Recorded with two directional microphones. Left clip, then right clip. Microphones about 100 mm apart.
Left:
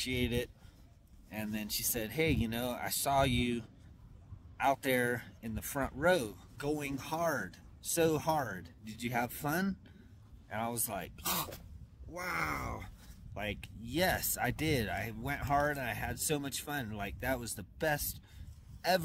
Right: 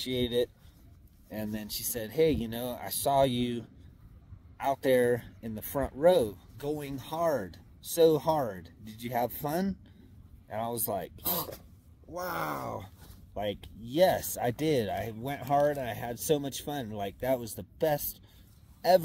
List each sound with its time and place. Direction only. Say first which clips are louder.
0.0 s speech: right 6 dB; 15° left (ahead or behind)
12.6 s speech: right 5 dB; centre (ahead or behind); by 17.0 s 15° left (ahead or behind)
17.0 s speech: right 9 dB; 5° left (ahead or behind)